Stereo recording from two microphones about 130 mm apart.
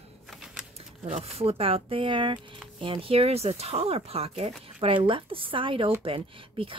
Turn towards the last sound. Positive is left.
turn(degrees=-45)  # may be behind; listen again after turning